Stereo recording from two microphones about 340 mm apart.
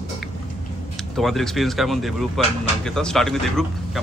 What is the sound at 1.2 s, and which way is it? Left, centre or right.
Speech, centre.